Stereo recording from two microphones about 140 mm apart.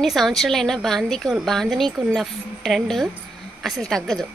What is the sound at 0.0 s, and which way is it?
A woman's voice, centre (ahead or behind).